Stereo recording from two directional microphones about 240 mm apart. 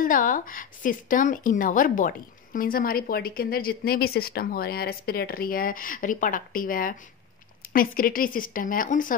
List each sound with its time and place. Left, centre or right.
0.0 s speech: left